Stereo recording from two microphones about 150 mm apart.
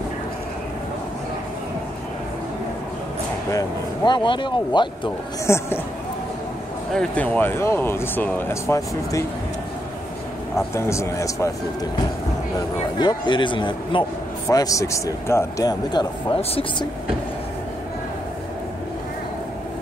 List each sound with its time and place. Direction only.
3.4 s speech: 25° left (ahead or behind)
5.5 s speech: 20° left (ahead or behind)
6.9 s speech: 5° left (ahead or behind)
10.7 s speech: 20° left (ahead or behind)
13.0 s speech: 30° left (ahead or behind)